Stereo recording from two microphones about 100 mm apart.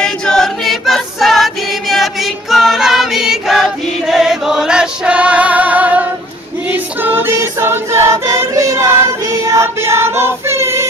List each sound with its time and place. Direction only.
0.0 s choir: 5° left (ahead or behind); by 10.9 s 25° right (ahead or behind)